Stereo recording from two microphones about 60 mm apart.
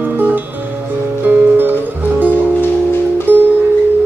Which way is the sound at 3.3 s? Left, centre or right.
Right.